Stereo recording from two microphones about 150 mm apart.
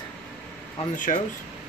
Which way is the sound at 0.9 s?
60° left (ahead or behind).